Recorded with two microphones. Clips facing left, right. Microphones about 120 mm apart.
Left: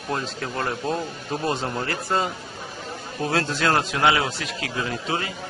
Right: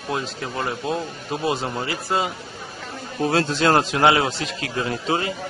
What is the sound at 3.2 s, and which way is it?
A man's voice, 20° right (ahead or behind).